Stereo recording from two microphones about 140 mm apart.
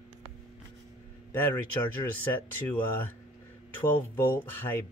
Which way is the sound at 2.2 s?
15° left (ahead or behind).